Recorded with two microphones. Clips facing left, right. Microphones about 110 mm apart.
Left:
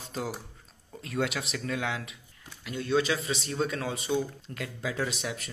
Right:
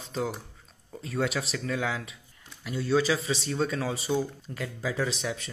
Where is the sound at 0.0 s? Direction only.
5° left (ahead or behind).